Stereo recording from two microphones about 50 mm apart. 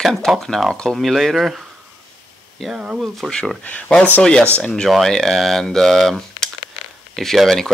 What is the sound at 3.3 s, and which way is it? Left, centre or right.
Speech, centre.